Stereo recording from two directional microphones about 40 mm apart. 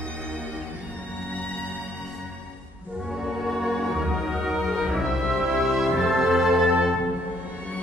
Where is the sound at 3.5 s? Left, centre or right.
Centre.